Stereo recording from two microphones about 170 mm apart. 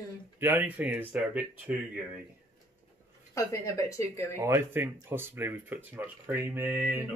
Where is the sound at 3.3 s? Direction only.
20° left (ahead or behind).